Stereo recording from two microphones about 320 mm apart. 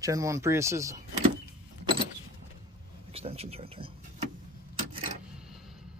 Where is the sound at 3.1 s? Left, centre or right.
Centre.